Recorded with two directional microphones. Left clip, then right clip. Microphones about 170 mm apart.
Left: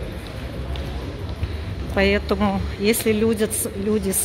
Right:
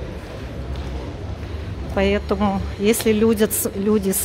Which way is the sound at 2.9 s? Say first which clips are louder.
Right 3 dB; 20° right (ahead or behind).